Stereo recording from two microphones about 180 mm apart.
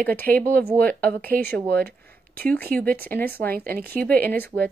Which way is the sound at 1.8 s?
10° left (ahead or behind).